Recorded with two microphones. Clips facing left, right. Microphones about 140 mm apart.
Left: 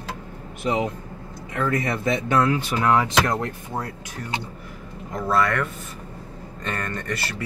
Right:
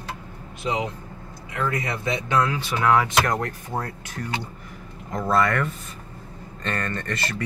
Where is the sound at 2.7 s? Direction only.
15° left (ahead or behind).